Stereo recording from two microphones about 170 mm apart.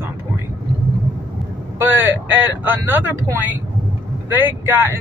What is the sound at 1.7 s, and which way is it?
Speech, 10° right (ahead or behind).